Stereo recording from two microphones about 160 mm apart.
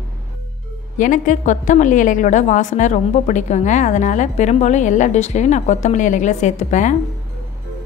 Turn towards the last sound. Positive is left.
turn(degrees=50)  # may be behind; listen again after turning